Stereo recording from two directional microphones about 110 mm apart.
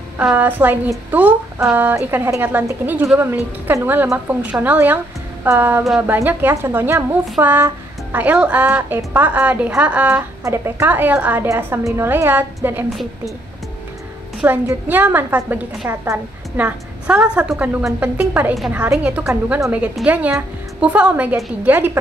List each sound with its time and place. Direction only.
0.2 s a woman's voice: 15° right (ahead or behind)
11.4 s a woman's voice: 25° right (ahead or behind)
14.4 s a woman's voice: 20° right (ahead or behind)